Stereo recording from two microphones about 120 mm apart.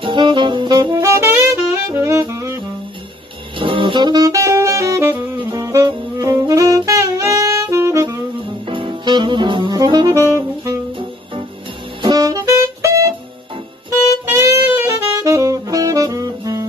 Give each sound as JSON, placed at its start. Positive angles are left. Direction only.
{"t": 0.0, "sound": "saxophone", "side_deg": -40}
{"t": 1.0, "sound": "saxophone", "side_deg": -20}
{"t": 3.5, "sound": "saxophone", "side_deg": -45}
{"t": 5.4, "sound": "music", "side_deg": -40}
{"t": 5.9, "sound": "saxophone", "side_deg": -30}
{"t": 8.6, "sound": "saxophone", "side_deg": -45}
{"t": 10.1, "sound": "music", "side_deg": -25}
{"t": 12.0, "sound": "saxophone", "side_deg": -35}
{"t": 14.2, "sound": "saxophone", "side_deg": -20}